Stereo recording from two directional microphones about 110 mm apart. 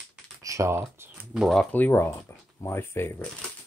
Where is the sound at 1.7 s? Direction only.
15° left (ahead or behind).